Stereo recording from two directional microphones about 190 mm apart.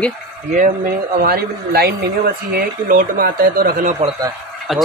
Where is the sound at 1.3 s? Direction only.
55° right (ahead or behind).